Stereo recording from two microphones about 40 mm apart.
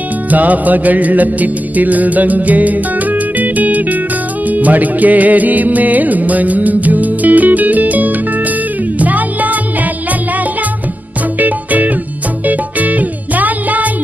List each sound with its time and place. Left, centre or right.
0.3 s music: right
11.3 s music: right